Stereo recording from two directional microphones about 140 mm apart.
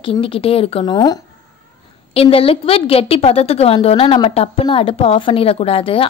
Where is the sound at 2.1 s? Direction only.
45° left (ahead or behind).